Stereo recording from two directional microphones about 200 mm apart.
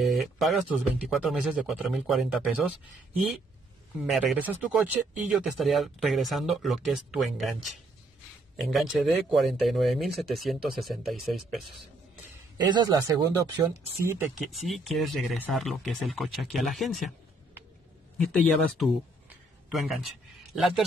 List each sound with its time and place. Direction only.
0.0 s speech: centre (ahead or behind)
4.0 s speech: centre (ahead or behind)
12.6 s speech: 20° right (ahead or behind)
14.4 s speech: centre (ahead or behind)
18.1 s speech: 5° left (ahead or behind)
19.2 s a sound: centre (ahead or behind)
20.5 s speech: centre (ahead or behind)